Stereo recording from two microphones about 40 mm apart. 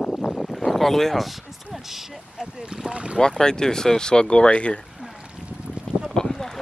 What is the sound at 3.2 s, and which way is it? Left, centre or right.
Speech, centre.